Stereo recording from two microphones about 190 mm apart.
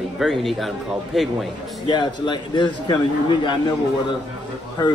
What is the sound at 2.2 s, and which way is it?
A man's voice, 25° left (ahead or behind).